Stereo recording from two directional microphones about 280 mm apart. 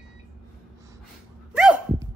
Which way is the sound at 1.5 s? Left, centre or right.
Centre.